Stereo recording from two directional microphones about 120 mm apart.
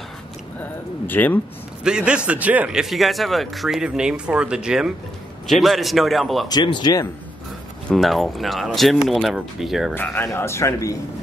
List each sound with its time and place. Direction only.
0.6 s speech: 15° left (ahead or behind)
1.9 s a man's voice: 10° right (ahead or behind)
6.5 s speech: 35° left (ahead or behind)
7.9 s a man's voice: centre (ahead or behind)
9.9 s a man's voice: 20° left (ahead or behind)